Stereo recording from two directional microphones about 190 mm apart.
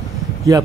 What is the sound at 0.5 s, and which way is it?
Speech, 20° right (ahead or behind).